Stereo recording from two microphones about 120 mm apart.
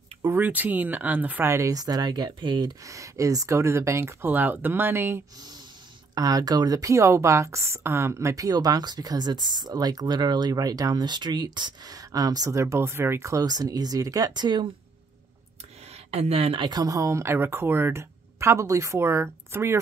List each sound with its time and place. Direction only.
0.2 s speech: 15° right (ahead or behind)
1.5 s speech: 25° right (ahead or behind)
6.1 s speech: 30° right (ahead or behind)
16.1 s speech: 55° right (ahead or behind); by 19.8 s 20° right (ahead or behind)